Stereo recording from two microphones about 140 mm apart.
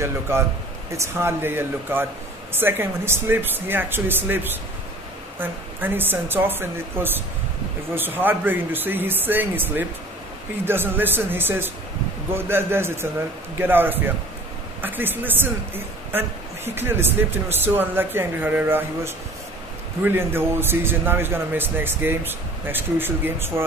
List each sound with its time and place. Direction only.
0.9 s a woman's voice: 20° right (ahead or behind)